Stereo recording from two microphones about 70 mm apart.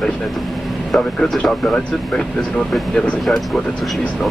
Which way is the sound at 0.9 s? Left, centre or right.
Centre.